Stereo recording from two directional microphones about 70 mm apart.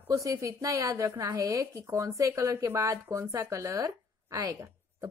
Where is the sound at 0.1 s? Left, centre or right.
Right.